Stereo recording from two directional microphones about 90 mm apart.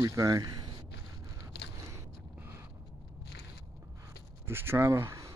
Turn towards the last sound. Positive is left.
turn(degrees=-35)  # may be behind; listen again after turning